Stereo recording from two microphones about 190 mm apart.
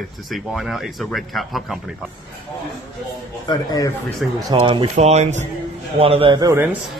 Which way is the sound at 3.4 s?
20° left (ahead or behind).